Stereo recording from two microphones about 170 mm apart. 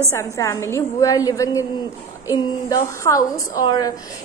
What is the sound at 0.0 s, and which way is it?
A woman's voice, 15° left (ahead or behind).